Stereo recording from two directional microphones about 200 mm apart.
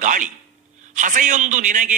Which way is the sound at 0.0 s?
40° right (ahead or behind).